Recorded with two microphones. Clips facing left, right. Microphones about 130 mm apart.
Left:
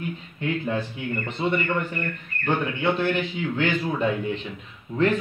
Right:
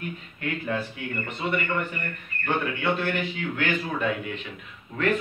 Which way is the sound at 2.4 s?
20° left (ahead or behind).